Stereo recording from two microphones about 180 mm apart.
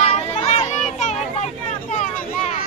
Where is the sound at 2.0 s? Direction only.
40° left (ahead or behind).